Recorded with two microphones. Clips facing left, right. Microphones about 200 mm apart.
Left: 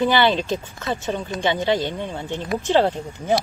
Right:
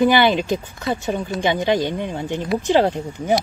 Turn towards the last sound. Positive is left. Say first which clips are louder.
# right 2 dB
turn(degrees=-15)  # may be behind; listen again after turning